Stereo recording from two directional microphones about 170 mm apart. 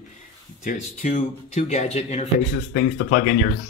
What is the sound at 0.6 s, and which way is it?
Speech, 50° left (ahead or behind).